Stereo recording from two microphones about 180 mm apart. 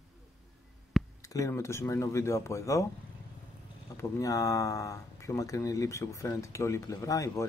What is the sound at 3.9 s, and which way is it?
Speech, 20° left (ahead or behind).